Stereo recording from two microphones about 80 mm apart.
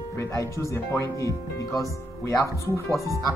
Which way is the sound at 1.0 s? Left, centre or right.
Right.